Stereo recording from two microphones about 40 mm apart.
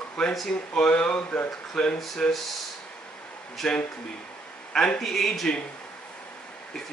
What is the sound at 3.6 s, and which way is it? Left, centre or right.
Speech, centre.